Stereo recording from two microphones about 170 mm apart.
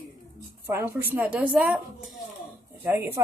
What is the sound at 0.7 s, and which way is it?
Speech, 15° right (ahead or behind).